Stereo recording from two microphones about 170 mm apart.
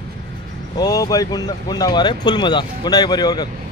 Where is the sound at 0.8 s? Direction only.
20° left (ahead or behind).